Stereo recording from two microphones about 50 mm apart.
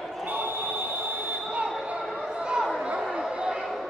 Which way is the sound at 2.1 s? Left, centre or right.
Centre.